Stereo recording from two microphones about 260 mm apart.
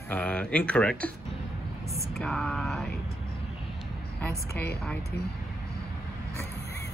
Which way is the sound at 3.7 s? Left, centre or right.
Centre.